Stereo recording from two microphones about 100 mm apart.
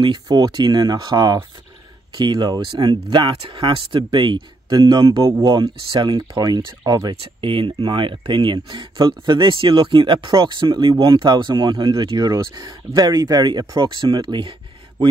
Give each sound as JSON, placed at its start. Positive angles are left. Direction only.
{"t": 0.0, "sound": "speech", "side_deg": -50}
{"t": 5.2, "sound": "speech", "side_deg": -35}
{"t": 5.5, "sound": "speech", "side_deg": -50}
{"t": 7.4, "sound": "speech", "side_deg": -55}